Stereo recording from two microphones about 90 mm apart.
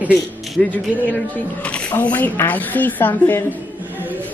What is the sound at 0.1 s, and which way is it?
A woman's voice, 15° left (ahead or behind).